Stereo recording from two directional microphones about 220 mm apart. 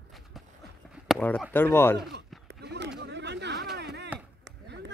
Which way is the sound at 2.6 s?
50° right (ahead or behind).